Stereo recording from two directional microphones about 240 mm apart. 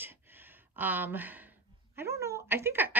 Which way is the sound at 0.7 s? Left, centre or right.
Centre.